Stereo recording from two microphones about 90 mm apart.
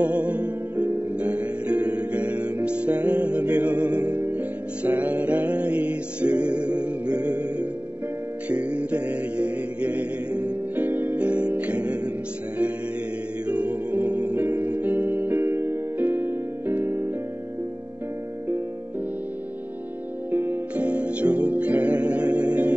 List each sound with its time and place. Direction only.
0.0 s music: 15° right (ahead or behind)
13.5 s music: 15° right (ahead or behind)
20.2 s music: 20° right (ahead or behind)